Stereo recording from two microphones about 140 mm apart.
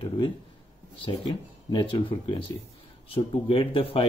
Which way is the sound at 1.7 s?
35° left (ahead or behind).